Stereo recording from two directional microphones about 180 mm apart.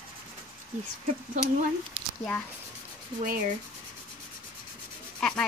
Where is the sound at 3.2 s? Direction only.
50° right (ahead or behind).